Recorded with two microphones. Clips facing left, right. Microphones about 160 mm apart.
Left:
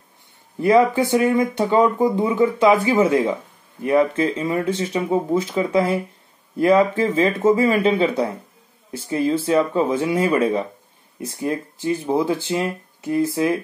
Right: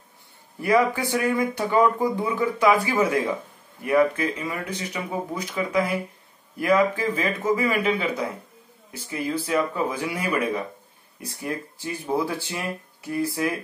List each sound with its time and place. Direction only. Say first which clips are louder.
0.6 s speech: left 6 dB; 25° left (ahead or behind)